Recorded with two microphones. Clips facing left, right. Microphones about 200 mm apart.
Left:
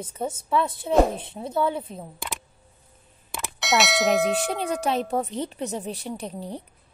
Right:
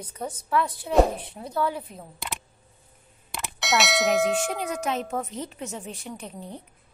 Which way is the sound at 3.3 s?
Centre (ahead or behind).